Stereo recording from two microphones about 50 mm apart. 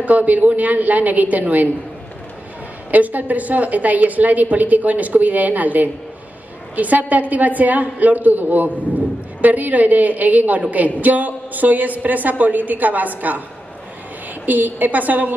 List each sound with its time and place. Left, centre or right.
0.0 s a woman's voice: right
2.9 s a woman's voice: right
14.4 s a woman's voice: right